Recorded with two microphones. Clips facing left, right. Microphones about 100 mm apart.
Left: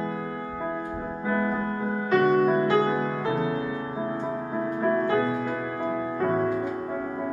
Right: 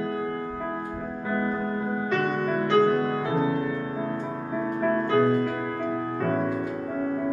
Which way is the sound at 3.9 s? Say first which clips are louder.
Even; 25° left (ahead or behind).